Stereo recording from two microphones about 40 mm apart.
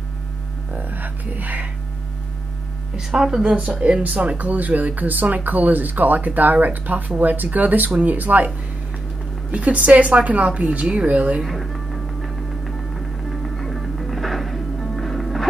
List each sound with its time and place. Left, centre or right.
0.7 s speech: right
3.2 s a woman's voice: centre; by 8.5 s right
9.5 s a woman's voice: right
11.4 s music: centre